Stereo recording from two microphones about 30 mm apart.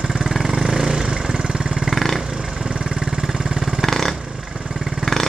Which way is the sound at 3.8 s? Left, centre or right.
Centre.